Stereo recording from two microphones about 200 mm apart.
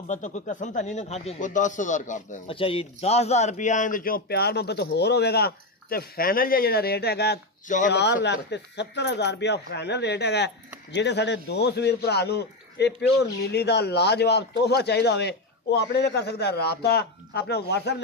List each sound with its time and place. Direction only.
0.1 s speech: 35° left (ahead or behind)
2.5 s a man's voice: 25° left (ahead or behind); by 7.3 s 55° left (ahead or behind)
7.6 s speech: 40° left (ahead or behind)
7.9 s speech: 60° left (ahead or behind)